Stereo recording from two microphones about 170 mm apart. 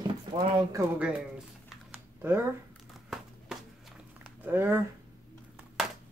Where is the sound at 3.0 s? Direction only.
Centre (ahead or behind).